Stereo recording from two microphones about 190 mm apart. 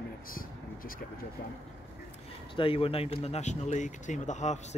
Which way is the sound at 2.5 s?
30° left (ahead or behind).